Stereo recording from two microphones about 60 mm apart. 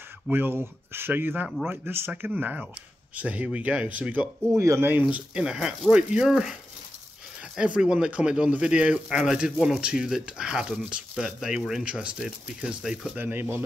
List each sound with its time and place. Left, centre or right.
0.3 s speech: right
4.6 s speech: right
5.3 s speech: centre
7.5 s speech: centre
13.2 s speech: right